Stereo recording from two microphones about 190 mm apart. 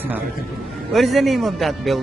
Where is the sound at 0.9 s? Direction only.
Centre (ahead or behind).